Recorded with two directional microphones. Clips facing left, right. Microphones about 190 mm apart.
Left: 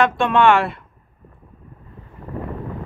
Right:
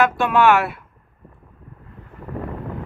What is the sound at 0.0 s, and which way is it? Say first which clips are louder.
Speech: left 1 dB; 5° right (ahead or behind).